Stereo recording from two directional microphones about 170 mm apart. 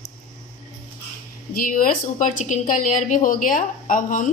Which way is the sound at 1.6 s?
55° left (ahead or behind).